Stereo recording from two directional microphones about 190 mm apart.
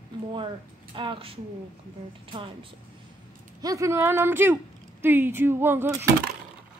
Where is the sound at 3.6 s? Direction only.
15° right (ahead or behind).